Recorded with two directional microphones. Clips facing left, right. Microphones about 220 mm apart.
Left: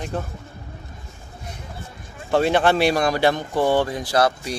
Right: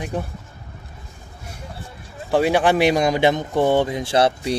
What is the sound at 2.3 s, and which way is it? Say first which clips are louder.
Speech: right 1 dB; 15° right (ahead or behind).